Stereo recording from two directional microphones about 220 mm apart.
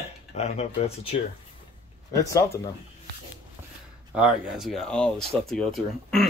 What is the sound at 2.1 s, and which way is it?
Speech, 15° left (ahead or behind).